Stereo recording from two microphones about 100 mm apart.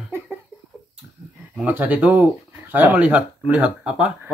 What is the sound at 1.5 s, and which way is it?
Speech, 15° right (ahead or behind).